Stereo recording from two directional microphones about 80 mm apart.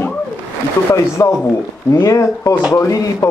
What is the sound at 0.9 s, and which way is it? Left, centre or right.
Speech, left.